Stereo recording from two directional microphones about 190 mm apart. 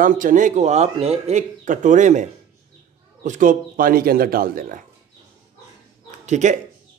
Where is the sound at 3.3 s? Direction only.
45° right (ahead or behind).